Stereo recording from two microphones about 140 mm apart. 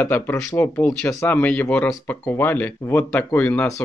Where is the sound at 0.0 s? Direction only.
15° left (ahead or behind).